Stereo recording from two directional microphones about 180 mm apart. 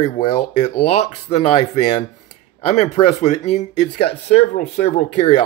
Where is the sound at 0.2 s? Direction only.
25° left (ahead or behind).